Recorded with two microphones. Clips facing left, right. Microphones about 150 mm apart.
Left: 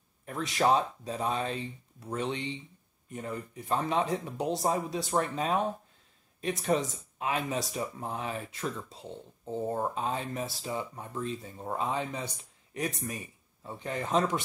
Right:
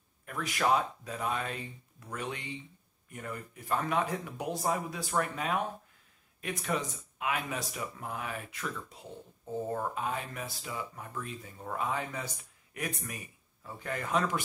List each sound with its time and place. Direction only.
0.2 s speech: 30° left (ahead or behind)